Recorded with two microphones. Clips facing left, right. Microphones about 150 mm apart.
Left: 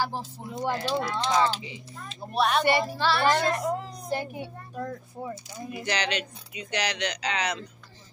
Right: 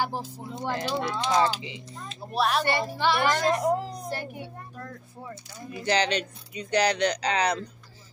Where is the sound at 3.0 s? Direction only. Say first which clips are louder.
Even; 15° right (ahead or behind).